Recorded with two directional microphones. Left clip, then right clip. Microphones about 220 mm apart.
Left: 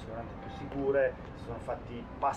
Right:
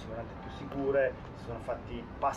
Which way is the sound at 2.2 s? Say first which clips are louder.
Even; 5° right (ahead or behind).